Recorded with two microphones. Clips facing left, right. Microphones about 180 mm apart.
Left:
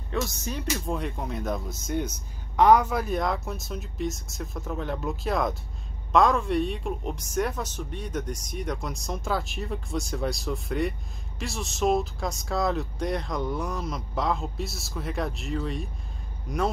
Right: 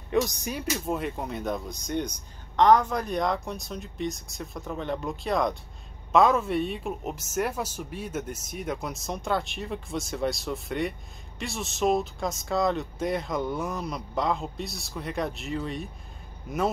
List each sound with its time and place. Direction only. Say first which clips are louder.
0.1 s speech: right 4 dB; 15° right (ahead or behind)